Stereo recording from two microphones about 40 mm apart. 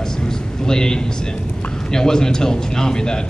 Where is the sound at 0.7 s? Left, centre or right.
Centre.